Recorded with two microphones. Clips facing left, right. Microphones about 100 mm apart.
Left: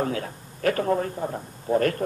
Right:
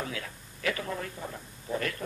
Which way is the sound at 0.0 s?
40° left (ahead or behind).